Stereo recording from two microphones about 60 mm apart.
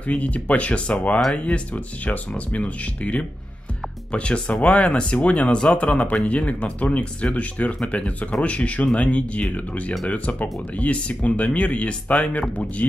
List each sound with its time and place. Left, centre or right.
0.1 s speech: left